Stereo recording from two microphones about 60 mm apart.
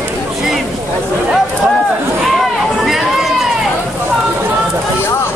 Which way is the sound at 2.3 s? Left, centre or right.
Centre.